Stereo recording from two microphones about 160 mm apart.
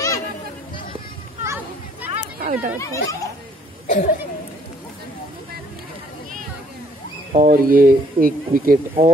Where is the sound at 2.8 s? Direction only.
20° left (ahead or behind).